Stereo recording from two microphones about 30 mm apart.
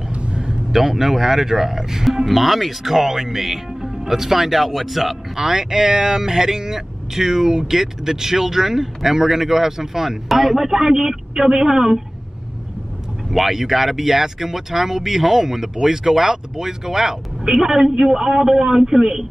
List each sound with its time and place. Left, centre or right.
0.1 s a sound: right
0.7 s speech: centre
2.1 s speech: centre
2.8 s speech: centre
13.3 s speech: centre